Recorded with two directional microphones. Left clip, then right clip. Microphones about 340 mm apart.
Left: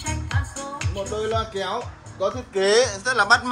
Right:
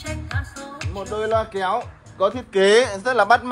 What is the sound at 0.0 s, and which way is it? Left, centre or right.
Music, centre.